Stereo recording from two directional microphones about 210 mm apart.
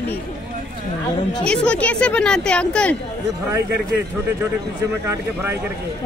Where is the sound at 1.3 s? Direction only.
5° left (ahead or behind).